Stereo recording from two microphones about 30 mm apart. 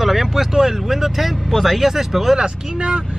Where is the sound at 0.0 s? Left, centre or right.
Centre.